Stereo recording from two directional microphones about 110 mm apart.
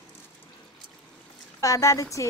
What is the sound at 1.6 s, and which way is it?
Speech, 30° left (ahead or behind).